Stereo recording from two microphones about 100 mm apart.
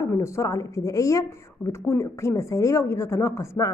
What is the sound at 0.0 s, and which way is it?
Speech, 30° left (ahead or behind).